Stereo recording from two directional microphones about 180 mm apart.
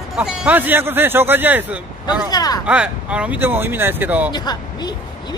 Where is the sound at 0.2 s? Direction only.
5° right (ahead or behind).